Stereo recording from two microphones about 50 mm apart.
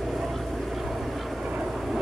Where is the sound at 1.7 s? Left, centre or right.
Centre.